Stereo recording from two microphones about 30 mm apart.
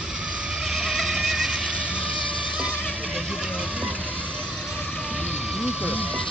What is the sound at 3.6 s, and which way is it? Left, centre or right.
Music, right.